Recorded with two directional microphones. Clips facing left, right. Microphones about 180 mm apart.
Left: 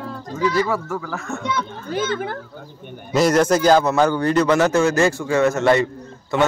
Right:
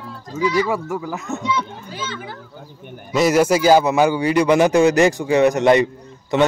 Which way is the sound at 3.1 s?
5° right (ahead or behind).